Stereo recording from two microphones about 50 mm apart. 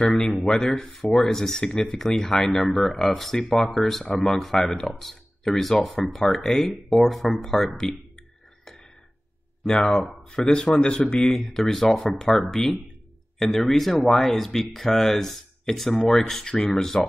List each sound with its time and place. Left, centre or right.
0.0 s speech: centre
9.7 s speech: centre